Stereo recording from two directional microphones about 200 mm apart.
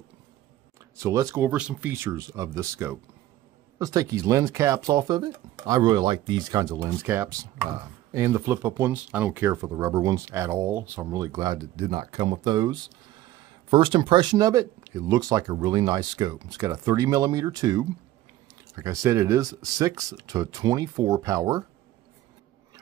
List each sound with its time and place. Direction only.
0.9 s speech: 15° right (ahead or behind)